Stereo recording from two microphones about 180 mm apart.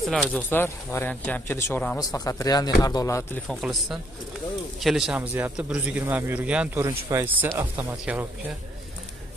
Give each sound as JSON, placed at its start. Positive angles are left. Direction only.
{"t": 0.1, "sound": "speech", "side_deg": 10}
{"t": 2.0, "sound": "speech", "side_deg": 20}
{"t": 3.4, "sound": "a man's voice", "side_deg": 0}